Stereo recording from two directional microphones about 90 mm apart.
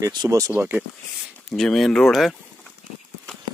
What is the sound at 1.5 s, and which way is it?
Speech, 5° left (ahead or behind).